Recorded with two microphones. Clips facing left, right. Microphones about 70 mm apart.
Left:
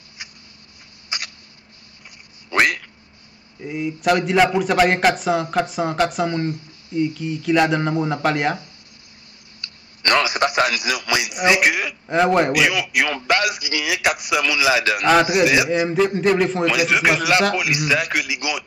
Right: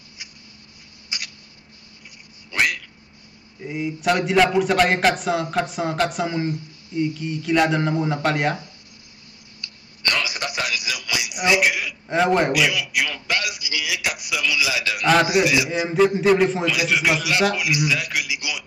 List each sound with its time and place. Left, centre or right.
1.1 s a sound: left
2.5 s a sound: left
3.6 s a man's voice: centre
9.6 s a sound: left
11.4 s speech: left
12.1 s a man's voice: centre
12.5 s a man's voice: left
15.0 s a man's voice: centre
16.6 s a man's voice: left